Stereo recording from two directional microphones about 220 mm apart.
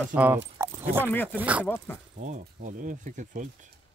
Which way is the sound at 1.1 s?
10° left (ahead or behind).